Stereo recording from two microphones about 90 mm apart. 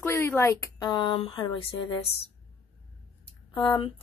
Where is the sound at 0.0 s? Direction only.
30° left (ahead or behind).